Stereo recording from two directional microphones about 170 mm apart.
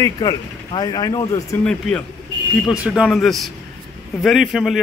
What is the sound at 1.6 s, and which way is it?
Speech, 5° left (ahead or behind).